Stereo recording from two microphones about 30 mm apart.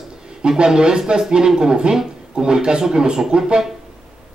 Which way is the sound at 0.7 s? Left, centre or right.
Right.